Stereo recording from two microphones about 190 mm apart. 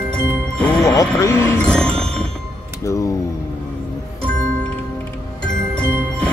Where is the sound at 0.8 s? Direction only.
20° left (ahead or behind).